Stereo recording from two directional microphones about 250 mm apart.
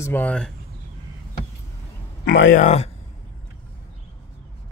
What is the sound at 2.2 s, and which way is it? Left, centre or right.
Speech, left.